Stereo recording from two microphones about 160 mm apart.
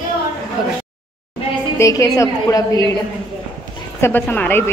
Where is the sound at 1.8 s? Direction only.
20° left (ahead or behind).